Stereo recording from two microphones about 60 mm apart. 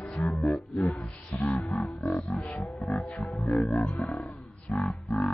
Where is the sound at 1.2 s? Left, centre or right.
Left.